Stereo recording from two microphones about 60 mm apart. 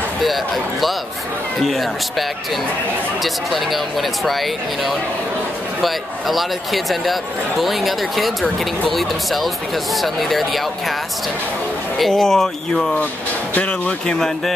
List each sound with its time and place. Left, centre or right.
0.2 s speech: centre
3.5 s speech: centre
12.1 s speech: centre
13.6 s speech: centre